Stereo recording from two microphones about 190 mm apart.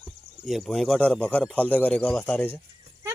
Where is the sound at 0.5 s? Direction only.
Centre (ahead or behind).